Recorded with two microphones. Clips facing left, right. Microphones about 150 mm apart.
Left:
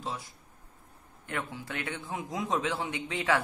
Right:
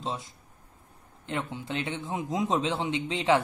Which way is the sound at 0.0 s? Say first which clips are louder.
Right 3 dB; 20° right (ahead or behind).